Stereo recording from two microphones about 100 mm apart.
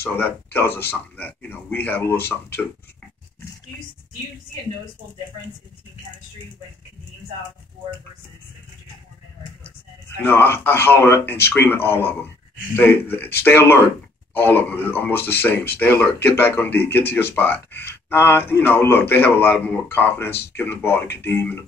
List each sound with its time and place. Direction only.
0.0 s speech: 20° left (ahead or behind)
10.1 s speech: 20° left (ahead or behind)